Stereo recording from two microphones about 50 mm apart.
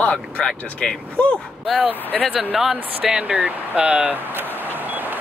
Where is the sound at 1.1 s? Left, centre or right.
Left.